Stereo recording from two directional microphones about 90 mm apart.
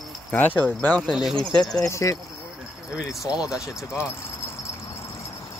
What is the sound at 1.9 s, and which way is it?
Speech, 35° left (ahead or behind).